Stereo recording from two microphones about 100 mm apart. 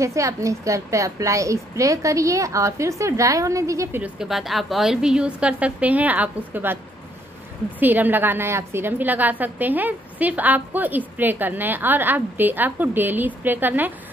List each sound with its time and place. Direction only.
0.0 s a woman's voice: 30° right (ahead or behind)
4.0 s a woman's voice: 5° right (ahead or behind)
7.8 s a woman's voice: 20° right (ahead or behind)